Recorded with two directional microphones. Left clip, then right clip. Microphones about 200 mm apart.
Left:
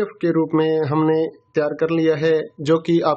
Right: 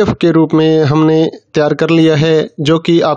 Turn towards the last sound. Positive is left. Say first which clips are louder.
# right 6 dB
turn(degrees=-40)  # may be behind; listen again after turning